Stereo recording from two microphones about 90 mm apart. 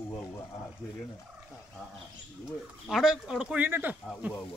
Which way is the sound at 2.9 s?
5° right (ahead or behind).